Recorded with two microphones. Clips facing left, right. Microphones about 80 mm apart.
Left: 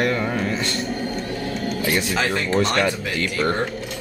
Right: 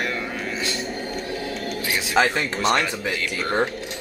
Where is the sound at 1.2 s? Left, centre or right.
Centre.